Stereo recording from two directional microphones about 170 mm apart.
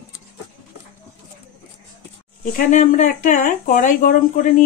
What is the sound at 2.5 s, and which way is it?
Speech, 50° left (ahead or behind).